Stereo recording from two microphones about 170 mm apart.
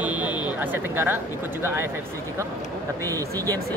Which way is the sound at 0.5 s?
10° right (ahead or behind).